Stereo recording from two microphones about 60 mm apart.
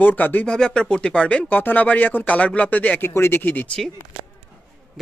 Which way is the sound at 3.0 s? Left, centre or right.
Left.